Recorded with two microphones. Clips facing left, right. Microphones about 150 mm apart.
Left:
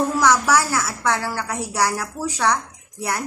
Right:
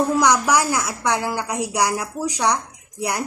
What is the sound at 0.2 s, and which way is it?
A woman's voice, 15° right (ahead or behind).